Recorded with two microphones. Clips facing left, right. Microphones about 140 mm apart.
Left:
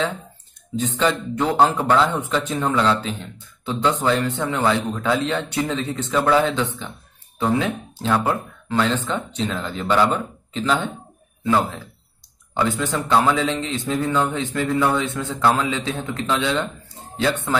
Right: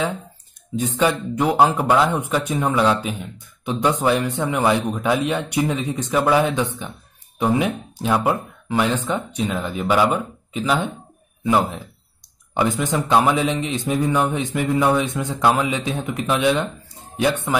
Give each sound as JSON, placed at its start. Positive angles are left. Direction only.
{"t": 0.7, "sound": "speech", "side_deg": -10}